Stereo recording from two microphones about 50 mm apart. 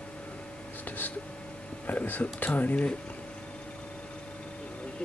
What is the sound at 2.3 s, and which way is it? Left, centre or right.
Speech, left.